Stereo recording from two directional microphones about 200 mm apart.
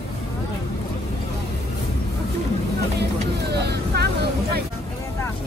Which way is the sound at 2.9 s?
55° right (ahead or behind).